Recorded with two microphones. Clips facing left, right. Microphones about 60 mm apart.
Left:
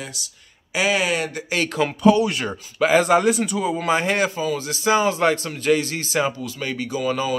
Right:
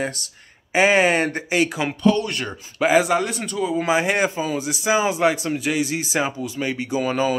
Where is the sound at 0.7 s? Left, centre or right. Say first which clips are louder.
Right 4 dB; right.